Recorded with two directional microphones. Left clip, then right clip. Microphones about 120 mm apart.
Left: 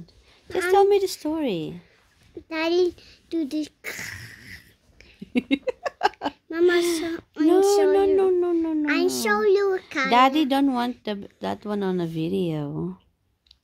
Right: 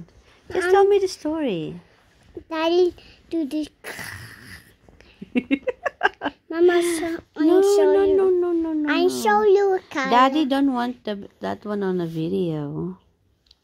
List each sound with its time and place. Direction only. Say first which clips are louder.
0.5 s speech: right 2 dB; 10° left (ahead or behind)
2.5 s a sound: right 3 dB; 10° left (ahead or behind)
5.3 s speech: right 1 dB; 20° left (ahead or behind)